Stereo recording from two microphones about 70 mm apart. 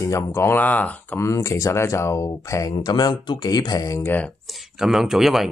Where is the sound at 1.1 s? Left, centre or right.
Left.